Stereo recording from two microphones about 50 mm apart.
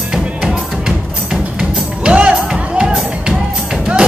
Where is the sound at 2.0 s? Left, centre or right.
Right.